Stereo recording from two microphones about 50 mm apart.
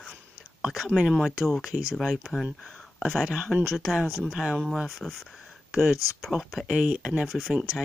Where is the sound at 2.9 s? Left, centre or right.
Centre.